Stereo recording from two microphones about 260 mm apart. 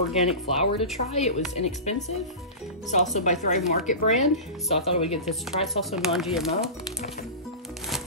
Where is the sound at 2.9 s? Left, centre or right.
Left.